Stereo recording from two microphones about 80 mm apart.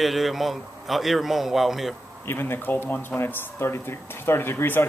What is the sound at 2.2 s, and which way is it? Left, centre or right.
Speech, left.